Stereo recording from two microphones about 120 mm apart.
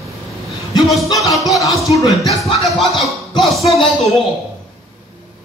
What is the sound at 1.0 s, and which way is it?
Music, 30° left (ahead or behind).